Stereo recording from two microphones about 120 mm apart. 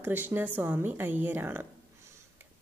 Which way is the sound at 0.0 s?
20° right (ahead or behind).